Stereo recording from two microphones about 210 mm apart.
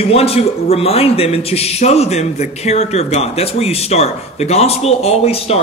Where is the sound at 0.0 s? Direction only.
30° left (ahead or behind).